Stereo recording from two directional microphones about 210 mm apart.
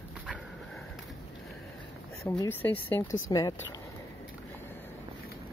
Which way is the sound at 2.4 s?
10° left (ahead or behind).